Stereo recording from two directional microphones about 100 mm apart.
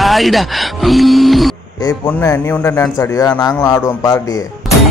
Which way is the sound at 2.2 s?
30° left (ahead or behind).